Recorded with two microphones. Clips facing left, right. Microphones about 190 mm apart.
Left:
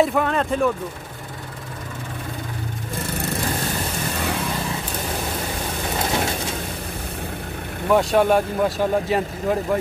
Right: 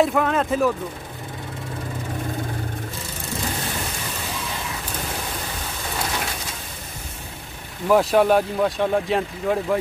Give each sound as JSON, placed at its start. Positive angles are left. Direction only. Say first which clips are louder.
{"t": 0.0, "sound": "speech", "louder": "even", "side_deg": 0}
{"t": 3.0, "sound": "vehicle", "louder": "left 7 dB", "side_deg": 65}
{"t": 7.9, "sound": "speech", "louder": "even", "side_deg": 0}